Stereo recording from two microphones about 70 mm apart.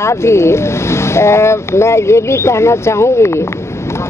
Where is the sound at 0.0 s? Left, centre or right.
Left.